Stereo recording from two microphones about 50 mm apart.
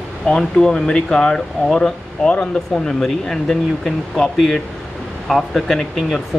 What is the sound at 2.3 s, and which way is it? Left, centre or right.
Speech, left.